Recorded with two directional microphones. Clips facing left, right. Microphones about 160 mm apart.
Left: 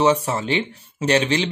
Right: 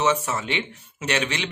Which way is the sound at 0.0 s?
35° left (ahead or behind).